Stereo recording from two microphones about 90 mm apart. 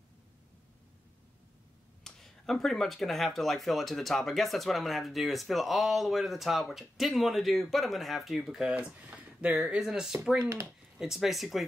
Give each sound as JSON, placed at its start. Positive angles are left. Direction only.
{"t": 2.0, "sound": "speech", "side_deg": 5}
{"t": 9.0, "sound": "a sound", "side_deg": -15}
{"t": 9.6, "sound": "speech", "side_deg": -5}
{"t": 10.4, "sound": "speech", "side_deg": -35}
{"t": 11.0, "sound": "speech", "side_deg": -5}